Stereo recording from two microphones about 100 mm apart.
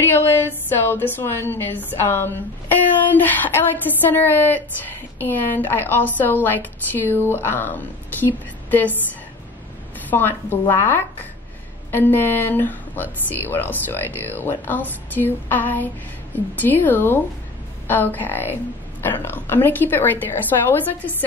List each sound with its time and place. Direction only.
0.1 s a woman's voice: 20° left (ahead or behind)
10.0 s a woman's voice: 20° left (ahead or behind)
11.9 s a woman's voice: 20° left (ahead or behind)